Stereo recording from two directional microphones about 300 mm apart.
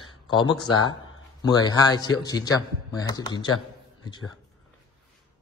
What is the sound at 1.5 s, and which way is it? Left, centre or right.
A man's voice, centre.